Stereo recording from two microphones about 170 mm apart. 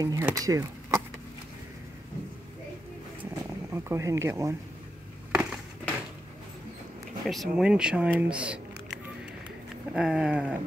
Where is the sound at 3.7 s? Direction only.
15° right (ahead or behind).